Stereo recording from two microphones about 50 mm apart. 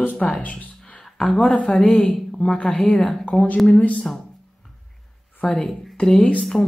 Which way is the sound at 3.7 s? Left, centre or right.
Left.